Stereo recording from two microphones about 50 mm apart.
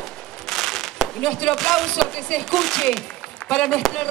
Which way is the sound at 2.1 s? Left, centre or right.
Centre.